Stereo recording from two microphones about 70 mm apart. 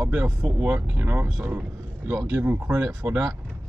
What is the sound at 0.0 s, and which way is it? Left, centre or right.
Speech, right.